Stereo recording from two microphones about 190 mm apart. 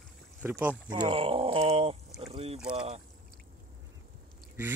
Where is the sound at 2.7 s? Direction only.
35° right (ahead or behind).